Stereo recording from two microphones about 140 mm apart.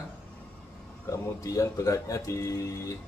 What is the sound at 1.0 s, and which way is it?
Speech, 25° left (ahead or behind).